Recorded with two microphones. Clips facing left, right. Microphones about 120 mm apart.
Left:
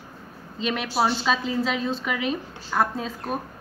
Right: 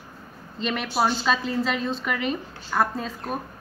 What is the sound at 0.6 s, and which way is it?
A woman's voice, centre (ahead or behind).